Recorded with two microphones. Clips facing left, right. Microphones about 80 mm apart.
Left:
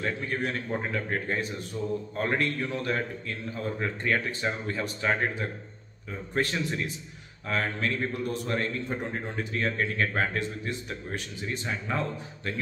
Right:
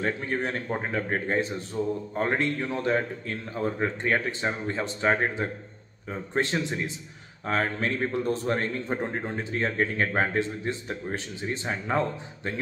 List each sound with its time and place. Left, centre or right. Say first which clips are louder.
0.0 s a man's voice: right 2 dB; right